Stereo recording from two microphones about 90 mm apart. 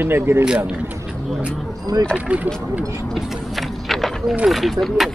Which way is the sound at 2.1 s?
15° right (ahead or behind).